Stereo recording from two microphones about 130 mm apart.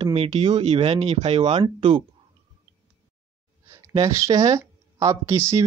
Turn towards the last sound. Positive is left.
turn(degrees=-20)  # may be behind; listen again after turning